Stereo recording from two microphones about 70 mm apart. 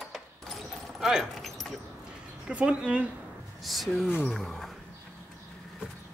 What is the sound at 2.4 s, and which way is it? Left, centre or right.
Speech, centre.